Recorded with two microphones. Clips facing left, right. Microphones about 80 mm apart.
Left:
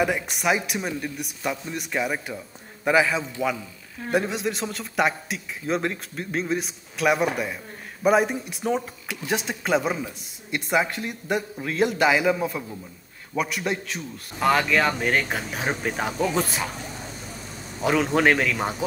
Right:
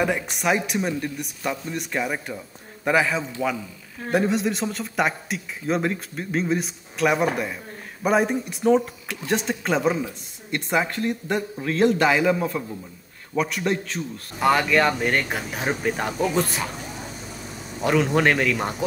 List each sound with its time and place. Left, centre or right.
0.0 s speech: centre
17.8 s speech: centre